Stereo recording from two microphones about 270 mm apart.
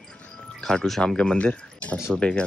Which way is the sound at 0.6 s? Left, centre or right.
Centre.